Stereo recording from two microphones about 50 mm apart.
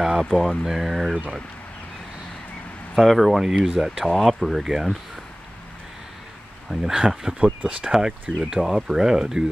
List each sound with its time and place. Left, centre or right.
0.2 s speech: centre
0.7 s speech: centre
3.0 s speech: centre
3.3 s speech: centre
6.7 s speech: centre
7.3 s speech: right